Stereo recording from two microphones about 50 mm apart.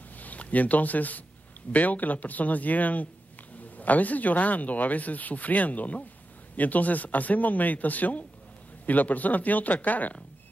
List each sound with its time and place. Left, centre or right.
0.2 s speech: left